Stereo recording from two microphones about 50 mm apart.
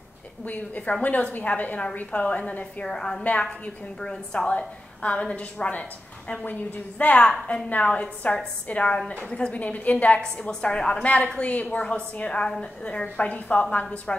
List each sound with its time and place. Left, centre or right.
0.5 s a woman's voice: left
2.8 s a woman's voice: centre; by 7.2 s left
7.2 s a woman's voice: centre
10.5 s a woman's voice: centre